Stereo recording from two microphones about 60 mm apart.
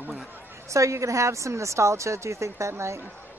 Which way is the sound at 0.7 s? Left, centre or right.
Right.